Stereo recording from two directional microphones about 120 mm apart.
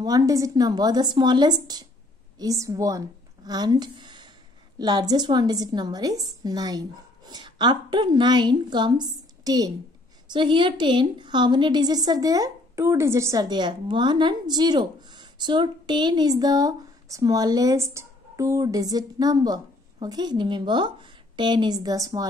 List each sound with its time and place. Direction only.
0.0 s a woman's voice: 30° right (ahead or behind)